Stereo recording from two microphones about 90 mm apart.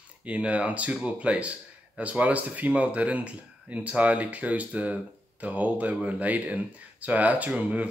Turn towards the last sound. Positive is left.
turn(degrees=-15)  # may be behind; listen again after turning